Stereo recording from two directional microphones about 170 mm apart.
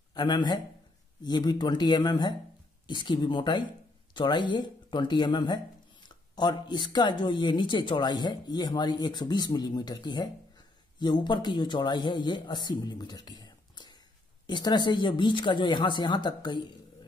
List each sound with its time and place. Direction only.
0.1 s a man's voice: 25° left (ahead or behind)